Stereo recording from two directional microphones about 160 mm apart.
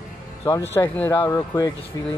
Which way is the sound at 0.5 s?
25° left (ahead or behind).